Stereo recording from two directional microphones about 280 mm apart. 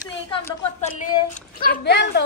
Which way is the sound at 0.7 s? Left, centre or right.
Left.